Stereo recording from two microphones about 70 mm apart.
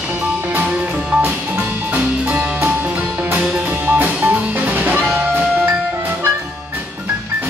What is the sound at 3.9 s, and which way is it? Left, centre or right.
Music, right.